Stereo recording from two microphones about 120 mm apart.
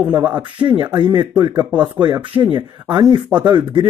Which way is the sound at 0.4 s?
40° right (ahead or behind).